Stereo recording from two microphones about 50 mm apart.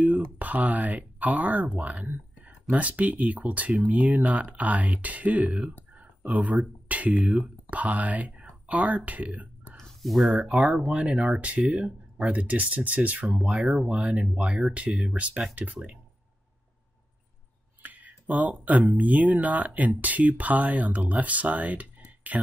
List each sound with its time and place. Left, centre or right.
0.0 s speech: right
5.9 s a sound: right
6.9 s speech: right
9.8 s a sound: centre
10.5 s speech: right
17.8 s speech: right